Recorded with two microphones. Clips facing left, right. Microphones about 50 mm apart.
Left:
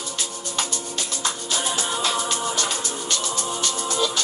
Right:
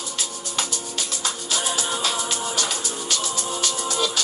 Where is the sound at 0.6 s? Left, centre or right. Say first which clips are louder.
Even; left.